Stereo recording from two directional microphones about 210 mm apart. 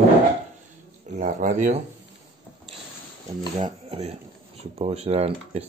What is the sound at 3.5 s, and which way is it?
Speech, 30° right (ahead or behind).